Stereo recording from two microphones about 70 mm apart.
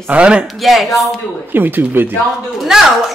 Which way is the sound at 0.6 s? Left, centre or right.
Centre.